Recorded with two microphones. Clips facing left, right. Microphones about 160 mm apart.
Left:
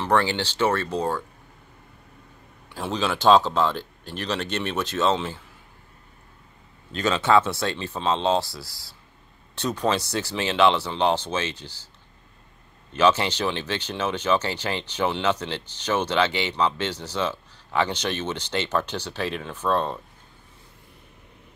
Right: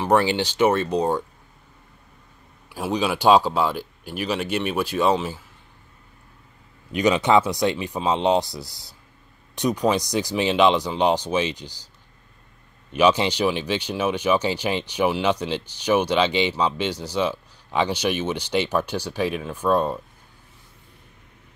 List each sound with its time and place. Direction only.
0.0 s speech: 15° right (ahead or behind)
2.7 s speech: 10° right (ahead or behind)
6.9 s speech: 15° right (ahead or behind)
12.9 s speech: 15° right (ahead or behind)